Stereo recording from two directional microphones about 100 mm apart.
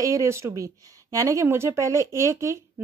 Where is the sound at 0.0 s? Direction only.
30° right (ahead or behind).